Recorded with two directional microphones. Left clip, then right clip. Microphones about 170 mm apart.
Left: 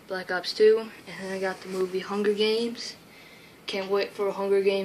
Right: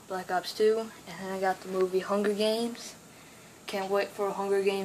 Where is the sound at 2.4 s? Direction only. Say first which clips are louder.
Left 3 dB; 65° right (ahead or behind).